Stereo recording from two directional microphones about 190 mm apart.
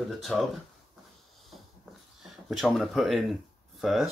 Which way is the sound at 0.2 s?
Centre (ahead or behind).